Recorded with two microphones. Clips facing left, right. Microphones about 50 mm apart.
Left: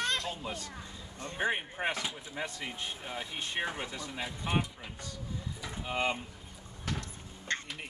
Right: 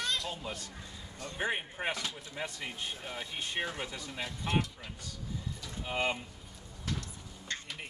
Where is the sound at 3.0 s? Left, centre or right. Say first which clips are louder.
Left 1 dB; centre.